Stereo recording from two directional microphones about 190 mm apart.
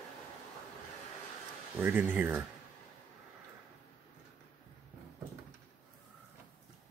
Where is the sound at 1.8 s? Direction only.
10° right (ahead or behind).